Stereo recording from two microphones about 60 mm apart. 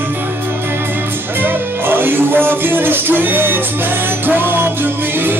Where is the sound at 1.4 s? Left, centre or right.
Right.